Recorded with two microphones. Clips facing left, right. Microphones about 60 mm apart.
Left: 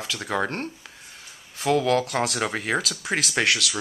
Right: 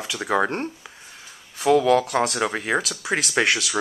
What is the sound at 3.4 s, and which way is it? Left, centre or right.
Speech, right.